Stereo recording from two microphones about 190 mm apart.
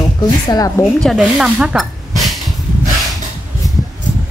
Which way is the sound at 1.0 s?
Centre (ahead or behind).